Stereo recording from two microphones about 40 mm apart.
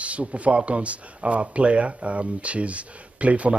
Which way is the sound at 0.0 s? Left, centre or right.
Right.